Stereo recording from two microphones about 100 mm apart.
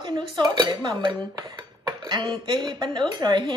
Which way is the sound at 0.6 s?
50° right (ahead or behind).